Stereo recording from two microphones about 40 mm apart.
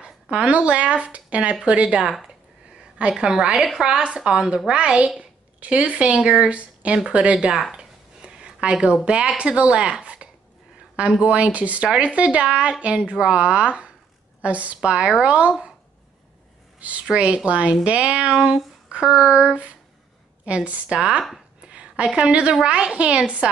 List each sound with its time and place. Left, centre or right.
0.0 s a woman's voice: right
6.5 s a woman's voice: right
7.7 s a sound: right
9.0 s a woman's voice: right
14.8 s a woman's voice: right
15.2 s a woman's voice: right
17.0 s a woman's voice: right
18.3 s a woman's voice: centre; by 20.8 s right
21.5 s a sound: right
22.3 s a woman's voice: right